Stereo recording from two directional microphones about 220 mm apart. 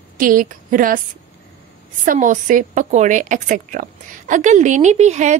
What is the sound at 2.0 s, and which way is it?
A woman's voice, 35° right (ahead or behind).